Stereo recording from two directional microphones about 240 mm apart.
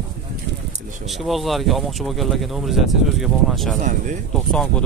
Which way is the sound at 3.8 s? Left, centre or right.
Right.